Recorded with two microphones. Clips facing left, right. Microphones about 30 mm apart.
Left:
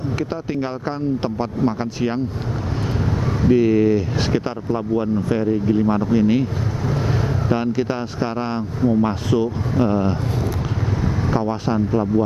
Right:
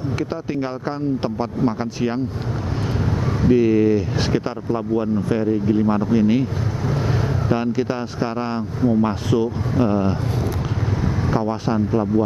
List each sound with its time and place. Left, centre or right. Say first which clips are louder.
0.6 s speech: even; centre
3.4 s speech: even; centre
11.2 s speech: even; centre